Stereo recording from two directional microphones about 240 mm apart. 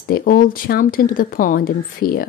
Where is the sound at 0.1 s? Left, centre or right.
Left.